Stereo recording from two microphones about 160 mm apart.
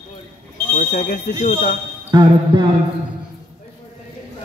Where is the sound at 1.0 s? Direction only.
80° left.